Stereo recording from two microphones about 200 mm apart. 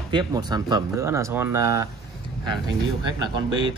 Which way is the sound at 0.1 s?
20° right (ahead or behind).